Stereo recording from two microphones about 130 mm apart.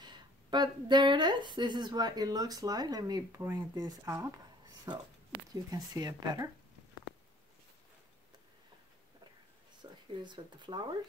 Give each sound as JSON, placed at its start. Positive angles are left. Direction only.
{"t": 0.0, "sound": "speech", "side_deg": -35}
{"t": 9.8, "sound": "speech", "side_deg": -35}